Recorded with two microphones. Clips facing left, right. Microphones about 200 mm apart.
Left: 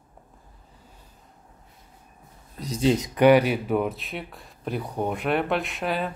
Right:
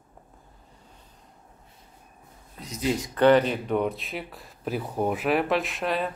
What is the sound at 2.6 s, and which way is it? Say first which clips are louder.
Speech: left 5 dB; 30° left (ahead or behind).